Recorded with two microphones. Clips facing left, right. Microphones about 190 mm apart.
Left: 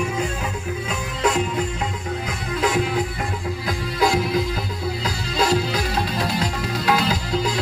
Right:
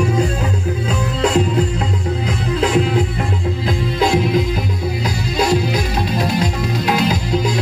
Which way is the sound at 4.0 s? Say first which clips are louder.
Right 4 dB; 20° right (ahead or behind).